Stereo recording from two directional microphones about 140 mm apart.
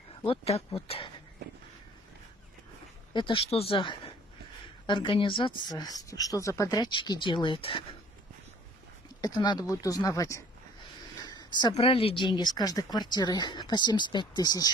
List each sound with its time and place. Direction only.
0.2 s speech: 40° left (ahead or behind)
3.1 s speech: 35° left (ahead or behind)
9.2 s speech: 30° left (ahead or behind)
11.2 s a sound: 30° left (ahead or behind)
11.8 s speech: 40° left (ahead or behind)